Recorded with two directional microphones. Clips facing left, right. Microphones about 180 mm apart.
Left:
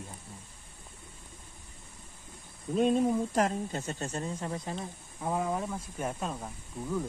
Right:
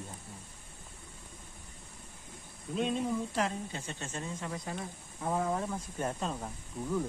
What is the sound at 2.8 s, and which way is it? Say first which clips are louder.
Speech: left 6 dB; 45° left (ahead or behind).